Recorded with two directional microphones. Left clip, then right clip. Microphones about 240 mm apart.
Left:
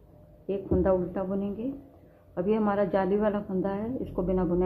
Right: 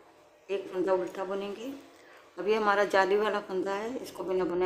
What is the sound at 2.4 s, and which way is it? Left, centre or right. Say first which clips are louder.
Speech: right 1 dB; centre.